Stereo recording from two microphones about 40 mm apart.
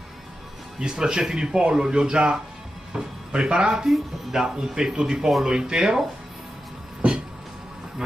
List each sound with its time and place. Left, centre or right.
0.7 s speech: centre
3.7 s speech: centre